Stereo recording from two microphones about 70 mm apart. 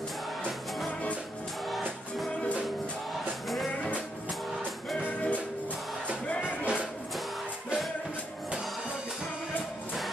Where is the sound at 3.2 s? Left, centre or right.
Centre.